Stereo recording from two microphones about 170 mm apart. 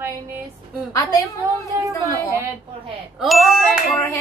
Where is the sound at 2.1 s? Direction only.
15° right (ahead or behind).